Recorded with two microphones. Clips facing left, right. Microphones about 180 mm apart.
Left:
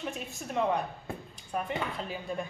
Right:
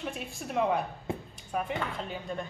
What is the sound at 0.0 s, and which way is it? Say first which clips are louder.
A woman's voice: even; 5° right (ahead or behind).